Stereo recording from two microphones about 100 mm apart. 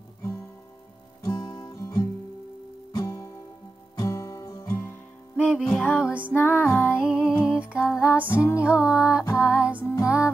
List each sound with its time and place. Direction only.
1.3 s music: 50° left (ahead or behind); by 4.9 s 30° left (ahead or behind)
5.6 s music: 10° left (ahead or behind)
6.0 s music: 15° right (ahead or behind)
6.3 s music: 20° left (ahead or behind)
6.9 s music: 10° right (ahead or behind)
8.3 s music: 25° left (ahead or behind)
8.5 s music: 10° right (ahead or behind)